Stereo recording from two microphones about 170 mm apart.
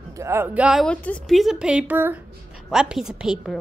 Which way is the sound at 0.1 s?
15° right (ahead or behind).